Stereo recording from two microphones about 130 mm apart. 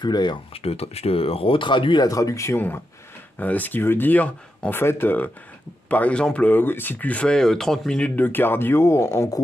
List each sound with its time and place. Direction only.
0.0 s speech: 35° left (ahead or behind)